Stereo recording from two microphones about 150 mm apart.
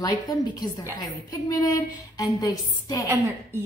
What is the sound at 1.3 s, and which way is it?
A woman's voice, 25° left (ahead or behind).